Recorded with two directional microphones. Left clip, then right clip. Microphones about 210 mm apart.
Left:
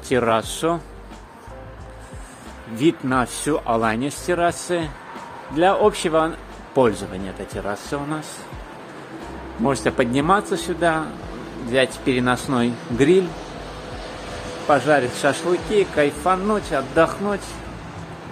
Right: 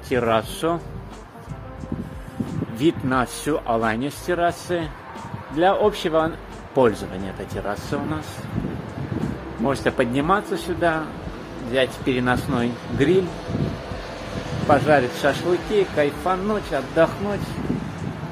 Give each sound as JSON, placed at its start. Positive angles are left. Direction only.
{"t": 0.1, "sound": "a man's voice", "side_deg": 20}
{"t": 2.8, "sound": "a man's voice", "side_deg": 10}
{"t": 9.7, "sound": "a man's voice", "side_deg": 15}
{"t": 14.7, "sound": "a man's voice", "side_deg": 5}